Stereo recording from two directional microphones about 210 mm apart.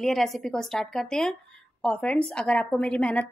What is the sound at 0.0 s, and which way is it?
A woman's voice, centre (ahead or behind).